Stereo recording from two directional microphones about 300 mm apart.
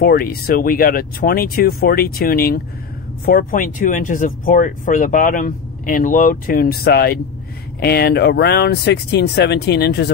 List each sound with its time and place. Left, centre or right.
0.0 s speech: left